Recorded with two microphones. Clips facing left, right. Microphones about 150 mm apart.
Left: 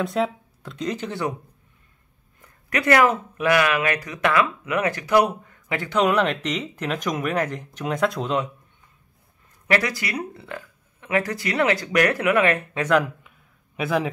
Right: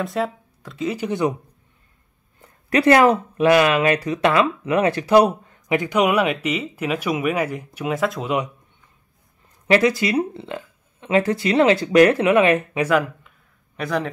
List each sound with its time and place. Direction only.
0.0 s speech: centre (ahead or behind)
2.4 s speech: 30° right (ahead or behind)
5.7 s speech: 15° right (ahead or behind)
9.7 s speech: 25° right (ahead or behind)
12.8 s speech: centre (ahead or behind)